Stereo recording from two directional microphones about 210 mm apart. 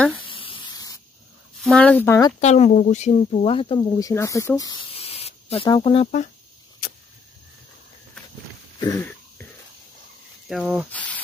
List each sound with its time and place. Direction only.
0.2 s spray: 25° left (ahead or behind)
1.6 s speech: 5° left (ahead or behind)
2.4 s speech: 35° left (ahead or behind)
4.1 s speech: 15° left (ahead or behind)
8.7 s throat clearing: 15° left (ahead or behind)
10.5 s speech: centre (ahead or behind)